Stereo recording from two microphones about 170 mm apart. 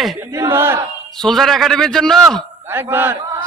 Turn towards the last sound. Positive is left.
turn(degrees=-15)  # may be behind; listen again after turning